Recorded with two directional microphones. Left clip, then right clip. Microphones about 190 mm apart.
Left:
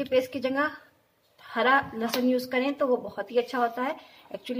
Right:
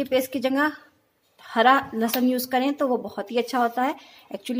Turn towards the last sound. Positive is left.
turn(degrees=-60)  # may be behind; listen again after turning